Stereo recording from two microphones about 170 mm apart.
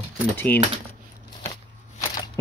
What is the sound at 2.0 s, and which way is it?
Shuffling cards, 15° left (ahead or behind).